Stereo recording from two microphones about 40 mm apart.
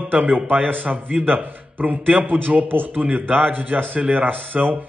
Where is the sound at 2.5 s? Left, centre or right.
Right.